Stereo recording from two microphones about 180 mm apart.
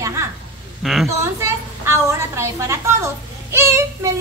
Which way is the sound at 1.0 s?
15° right (ahead or behind).